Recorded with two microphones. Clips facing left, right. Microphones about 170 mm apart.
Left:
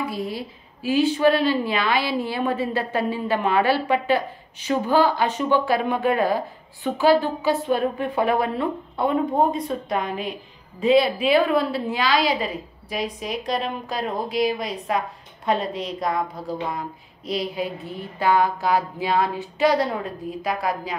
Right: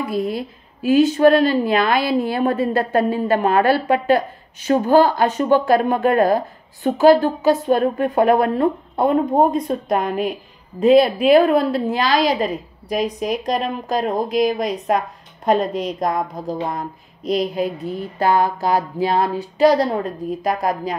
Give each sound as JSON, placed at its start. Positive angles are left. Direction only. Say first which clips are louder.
{"t": 0.8, "sound": "a woman's voice", "louder": "right 5 dB", "side_deg": -45}